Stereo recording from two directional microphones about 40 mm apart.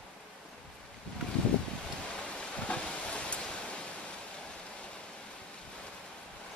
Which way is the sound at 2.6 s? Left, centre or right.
Left.